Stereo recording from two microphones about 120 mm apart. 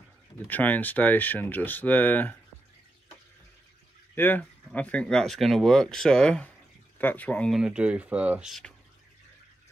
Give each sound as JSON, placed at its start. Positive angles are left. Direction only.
{"t": 0.5, "sound": "speech", "side_deg": 15}
{"t": 4.1, "sound": "speech", "side_deg": 15}
{"t": 7.5, "sound": "speech", "side_deg": -5}